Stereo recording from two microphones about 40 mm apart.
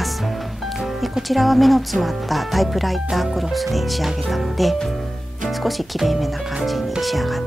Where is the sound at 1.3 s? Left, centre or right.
Centre.